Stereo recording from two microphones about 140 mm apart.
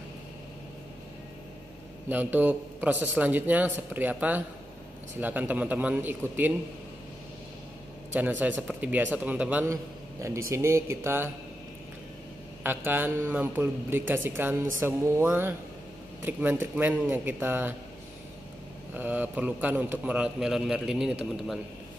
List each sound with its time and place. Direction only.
2.0 s a man's voice: 15° right (ahead or behind)
8.1 s a man's voice: 10° right (ahead or behind)
12.6 s a man's voice: 15° right (ahead or behind)
18.9 s a man's voice: 10° right (ahead or behind)